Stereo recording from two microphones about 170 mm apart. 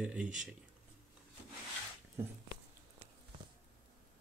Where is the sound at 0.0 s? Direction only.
5° right (ahead or behind).